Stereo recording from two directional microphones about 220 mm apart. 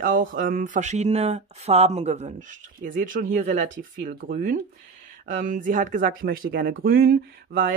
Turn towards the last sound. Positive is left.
turn(degrees=-45)  # may be behind; listen again after turning